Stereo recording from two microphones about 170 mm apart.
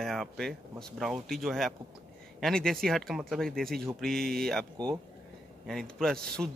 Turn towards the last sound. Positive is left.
turn(degrees=5)  # may be behind; listen again after turning